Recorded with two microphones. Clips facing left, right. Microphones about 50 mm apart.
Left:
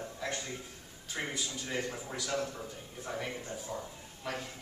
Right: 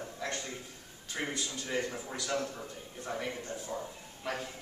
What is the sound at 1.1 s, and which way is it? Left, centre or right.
A man's voice, centre.